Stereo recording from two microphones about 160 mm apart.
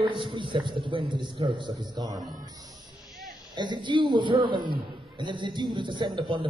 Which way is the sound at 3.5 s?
30° right (ahead or behind).